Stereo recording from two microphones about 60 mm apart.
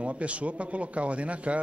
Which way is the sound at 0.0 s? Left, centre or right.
Right.